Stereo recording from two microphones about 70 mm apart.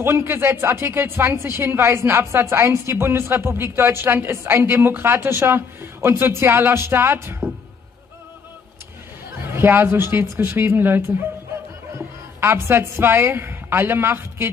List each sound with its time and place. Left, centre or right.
0.0 s speech: right
9.5 s speech: right
12.4 s speech: right